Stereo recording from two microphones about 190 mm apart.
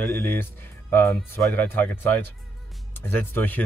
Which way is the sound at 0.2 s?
10° left (ahead or behind).